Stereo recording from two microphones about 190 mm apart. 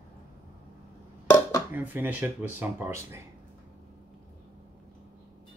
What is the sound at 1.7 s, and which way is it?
Speech, 10° right (ahead or behind).